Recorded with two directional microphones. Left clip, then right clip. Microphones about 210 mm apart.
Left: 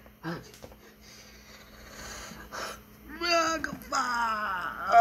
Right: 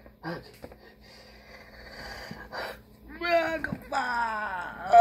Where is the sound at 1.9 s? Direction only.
35° left (ahead or behind).